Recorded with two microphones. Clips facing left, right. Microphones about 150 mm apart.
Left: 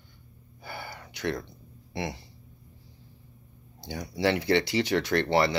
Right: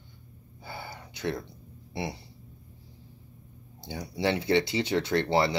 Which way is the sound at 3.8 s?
25° right (ahead or behind).